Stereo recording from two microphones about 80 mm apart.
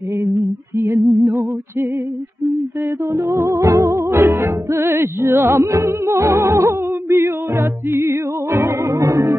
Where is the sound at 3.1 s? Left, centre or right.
Right.